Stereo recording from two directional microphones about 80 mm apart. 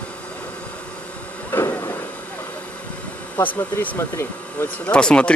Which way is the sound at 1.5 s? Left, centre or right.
Left.